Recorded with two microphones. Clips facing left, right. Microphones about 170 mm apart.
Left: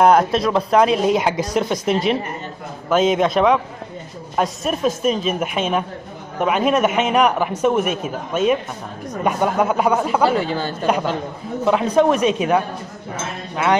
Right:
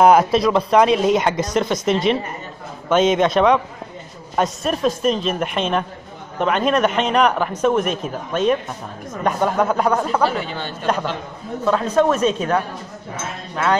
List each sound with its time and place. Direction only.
0.0 s a man's voice: 5° right (ahead or behind)
10.3 s speech: 35° left (ahead or behind)
11.6 s a man's voice: 15° left (ahead or behind)